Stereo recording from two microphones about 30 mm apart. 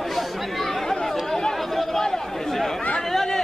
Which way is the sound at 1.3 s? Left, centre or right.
Centre.